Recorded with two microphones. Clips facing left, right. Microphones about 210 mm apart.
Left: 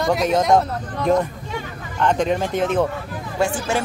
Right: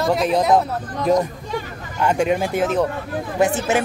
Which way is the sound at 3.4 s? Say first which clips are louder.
Right 3 dB; 20° right (ahead or behind).